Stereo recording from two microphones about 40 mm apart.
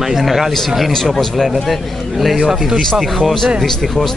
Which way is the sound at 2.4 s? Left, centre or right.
Centre.